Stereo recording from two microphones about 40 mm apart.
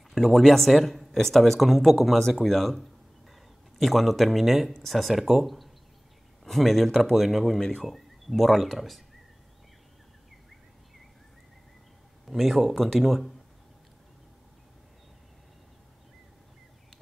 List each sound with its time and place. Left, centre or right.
0.1 s speech: centre
7.5 s speech: centre
7.8 s speech: centre
12.3 s speech: centre